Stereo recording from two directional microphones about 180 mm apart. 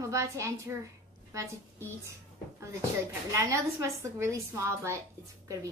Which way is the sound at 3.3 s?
15° right (ahead or behind).